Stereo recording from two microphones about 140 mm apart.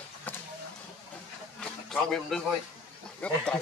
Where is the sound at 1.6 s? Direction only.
5° left (ahead or behind).